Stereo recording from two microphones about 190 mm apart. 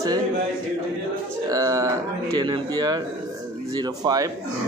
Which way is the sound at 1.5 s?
20° right (ahead or behind).